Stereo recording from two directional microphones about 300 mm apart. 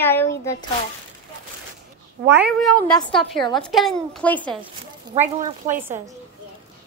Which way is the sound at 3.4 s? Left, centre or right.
Centre.